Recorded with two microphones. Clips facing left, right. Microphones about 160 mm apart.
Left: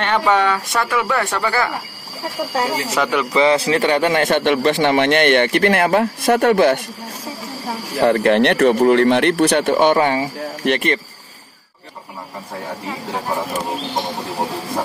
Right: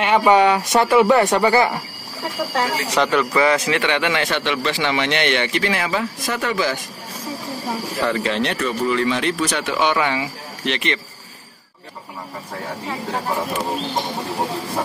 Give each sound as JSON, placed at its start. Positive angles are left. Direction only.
{"t": 0.0, "sound": "speech", "side_deg": -10}
{"t": 2.5, "sound": "speech", "side_deg": 10}
{"t": 3.3, "sound": "speech", "side_deg": 30}
{"t": 8.0, "sound": "speech", "side_deg": 55}